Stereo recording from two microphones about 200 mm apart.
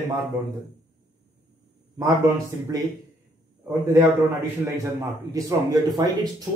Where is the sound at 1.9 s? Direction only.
15° right (ahead or behind).